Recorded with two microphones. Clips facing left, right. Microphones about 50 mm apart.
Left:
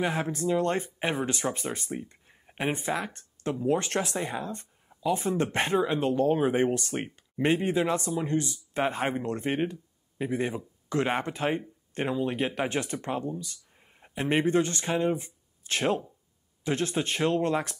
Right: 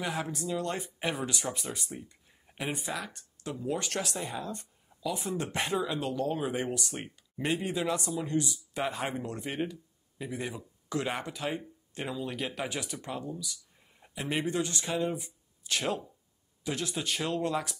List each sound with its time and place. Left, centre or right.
0.0 s speech: left